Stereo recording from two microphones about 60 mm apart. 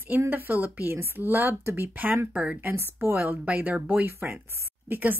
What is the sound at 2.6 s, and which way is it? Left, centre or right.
Speech, right.